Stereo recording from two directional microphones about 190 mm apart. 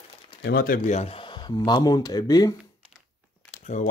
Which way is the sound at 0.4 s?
55° left (ahead or behind).